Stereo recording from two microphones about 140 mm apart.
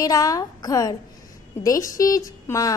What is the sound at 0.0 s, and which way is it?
A woman's voice, 25° left (ahead or behind).